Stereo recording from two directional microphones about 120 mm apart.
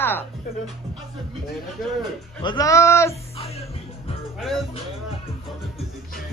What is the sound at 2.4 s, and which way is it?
Speech, 30° left (ahead or behind).